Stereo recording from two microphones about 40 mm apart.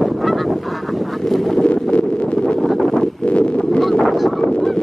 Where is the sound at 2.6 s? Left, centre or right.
Centre.